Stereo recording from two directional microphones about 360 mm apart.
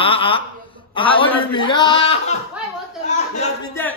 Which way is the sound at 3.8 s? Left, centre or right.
Centre.